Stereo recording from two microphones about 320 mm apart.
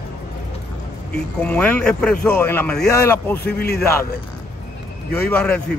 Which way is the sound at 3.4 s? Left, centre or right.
Left.